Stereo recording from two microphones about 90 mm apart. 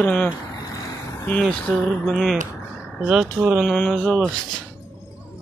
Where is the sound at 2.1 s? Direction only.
5° left (ahead or behind).